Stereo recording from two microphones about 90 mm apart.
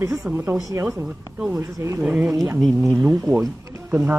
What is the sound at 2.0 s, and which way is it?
Speech, 10° right (ahead or behind).